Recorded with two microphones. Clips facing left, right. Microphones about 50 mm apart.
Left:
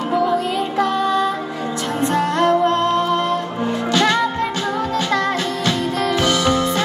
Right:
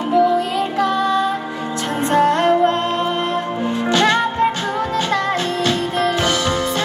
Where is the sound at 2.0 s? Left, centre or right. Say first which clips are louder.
Right 3 dB; right.